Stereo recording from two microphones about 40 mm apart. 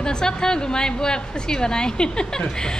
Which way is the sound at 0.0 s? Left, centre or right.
Centre.